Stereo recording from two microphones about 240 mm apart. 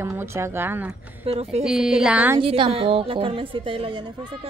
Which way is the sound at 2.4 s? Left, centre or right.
Right.